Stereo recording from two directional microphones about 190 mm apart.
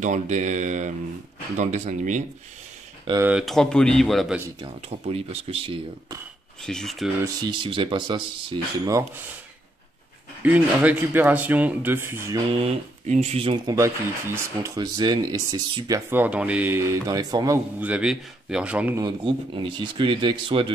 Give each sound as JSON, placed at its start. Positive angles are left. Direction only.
{"t": 0.0, "sound": "speech", "side_deg": -40}
{"t": 3.1, "sound": "speech", "side_deg": -15}
{"t": 3.3, "sound": "speech", "side_deg": 0}
{"t": 4.8, "sound": "speech", "side_deg": -30}
{"t": 6.6, "sound": "speech", "side_deg": 0}
{"t": 7.2, "sound": "speech", "side_deg": -25}
{"t": 10.4, "sound": "speech", "side_deg": -10}
{"t": 12.4, "sound": "speech", "side_deg": -30}
{"t": 13.7, "sound": "speech", "side_deg": -15}
{"t": 17.7, "sound": "speech", "side_deg": -5}
{"t": 18.9, "sound": "speech", "side_deg": -25}